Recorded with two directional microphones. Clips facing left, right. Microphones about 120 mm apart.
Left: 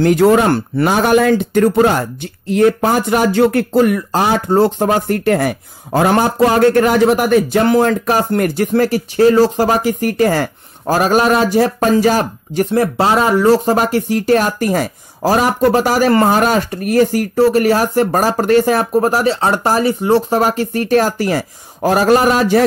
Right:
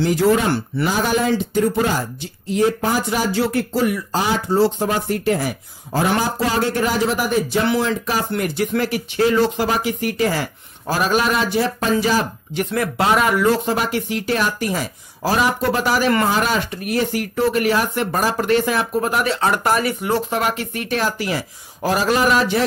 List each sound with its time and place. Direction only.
0.0 s speech: 60° left (ahead or behind)
12.7 s speech: 30° left (ahead or behind)